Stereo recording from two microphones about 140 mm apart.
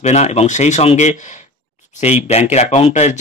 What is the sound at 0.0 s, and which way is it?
Speech, 50° left (ahead or behind).